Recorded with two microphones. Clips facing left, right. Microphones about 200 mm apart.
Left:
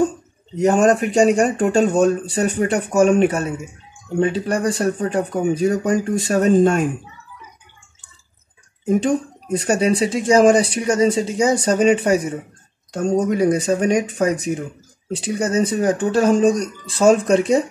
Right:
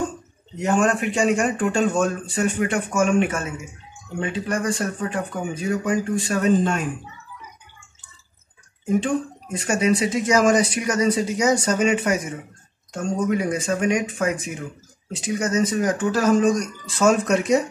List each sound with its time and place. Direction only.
0.6 s speech: 40° left (ahead or behind)
9.0 s speech: 35° left (ahead or behind)